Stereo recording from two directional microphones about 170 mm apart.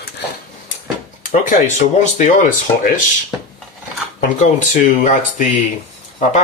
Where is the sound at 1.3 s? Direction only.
45° left (ahead or behind).